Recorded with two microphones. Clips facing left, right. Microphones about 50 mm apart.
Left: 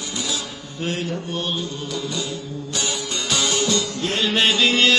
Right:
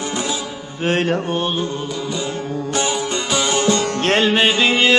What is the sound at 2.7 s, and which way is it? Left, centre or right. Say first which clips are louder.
Music: right 5 dB; right.